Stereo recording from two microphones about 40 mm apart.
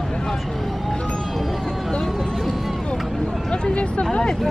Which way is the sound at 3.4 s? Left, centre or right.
Centre.